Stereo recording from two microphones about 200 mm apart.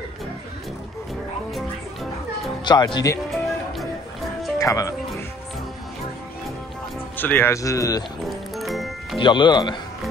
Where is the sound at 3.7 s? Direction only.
Centre (ahead or behind).